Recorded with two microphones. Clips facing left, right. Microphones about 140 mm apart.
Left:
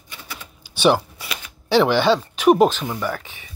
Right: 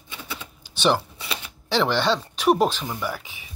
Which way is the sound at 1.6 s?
10° left (ahead or behind).